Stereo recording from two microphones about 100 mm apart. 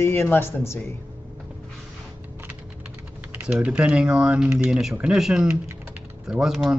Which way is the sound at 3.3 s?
10° right (ahead or behind).